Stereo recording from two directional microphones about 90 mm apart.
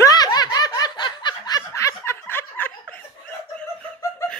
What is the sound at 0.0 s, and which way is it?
Snicker, 45° left (ahead or behind).